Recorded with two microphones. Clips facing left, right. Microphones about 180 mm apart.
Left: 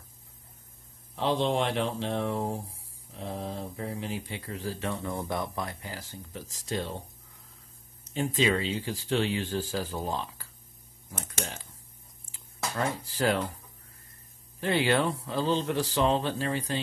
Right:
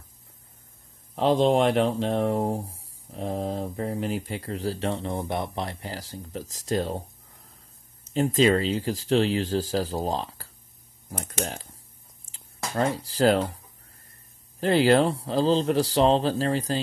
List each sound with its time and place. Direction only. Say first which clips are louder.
1.1 s speech: right 7 dB; 40° right (ahead or behind)
8.1 s speech: right 6 dB; 40° right (ahead or behind)
13.0 s speech: right 7 dB; 35° right (ahead or behind)
14.6 s speech: right 6 dB; 40° right (ahead or behind)